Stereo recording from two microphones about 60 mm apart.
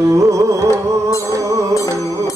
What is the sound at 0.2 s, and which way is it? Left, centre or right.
Music, right.